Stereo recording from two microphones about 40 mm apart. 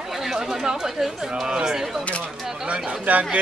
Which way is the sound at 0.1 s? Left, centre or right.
Centre.